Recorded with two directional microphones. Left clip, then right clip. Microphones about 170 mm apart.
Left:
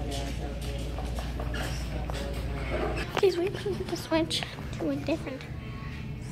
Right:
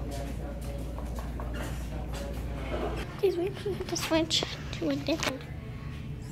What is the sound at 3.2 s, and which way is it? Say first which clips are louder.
A woman's voice: left 1 dB; centre (ahead or behind).